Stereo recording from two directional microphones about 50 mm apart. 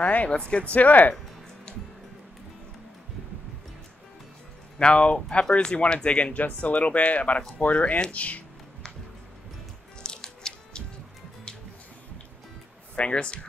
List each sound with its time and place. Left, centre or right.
0.0 s speech: left
4.7 s speech: left
10.0 s music: centre
12.9 s speech: left